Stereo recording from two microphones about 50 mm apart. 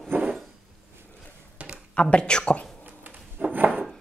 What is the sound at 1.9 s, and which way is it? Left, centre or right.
Speech, left.